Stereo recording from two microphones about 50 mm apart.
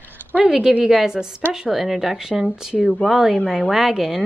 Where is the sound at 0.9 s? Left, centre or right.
Centre.